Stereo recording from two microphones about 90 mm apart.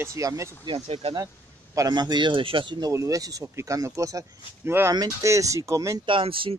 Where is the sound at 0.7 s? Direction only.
90° right.